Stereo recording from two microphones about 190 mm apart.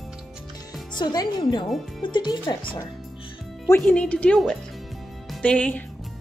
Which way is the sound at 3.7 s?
5° left (ahead or behind).